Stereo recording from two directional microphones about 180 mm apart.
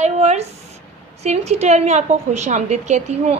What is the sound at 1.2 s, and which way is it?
A woman's voice, 35° right (ahead or behind).